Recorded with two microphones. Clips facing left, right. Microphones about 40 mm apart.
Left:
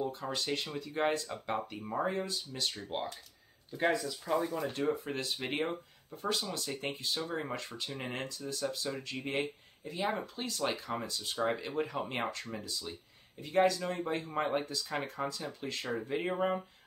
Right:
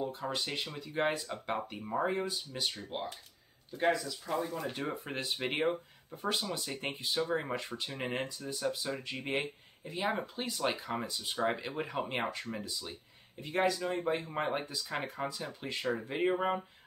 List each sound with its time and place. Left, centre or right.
0.1 s speech: centre
3.7 s speech: centre
5.0 s speech: centre